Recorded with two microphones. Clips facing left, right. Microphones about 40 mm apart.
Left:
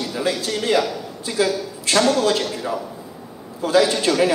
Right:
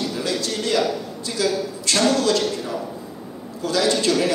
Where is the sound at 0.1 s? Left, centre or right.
Centre.